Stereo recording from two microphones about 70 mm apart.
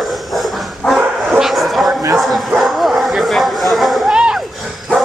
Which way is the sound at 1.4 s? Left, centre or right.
Centre.